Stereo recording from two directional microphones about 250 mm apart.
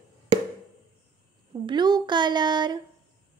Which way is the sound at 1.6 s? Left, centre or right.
Centre.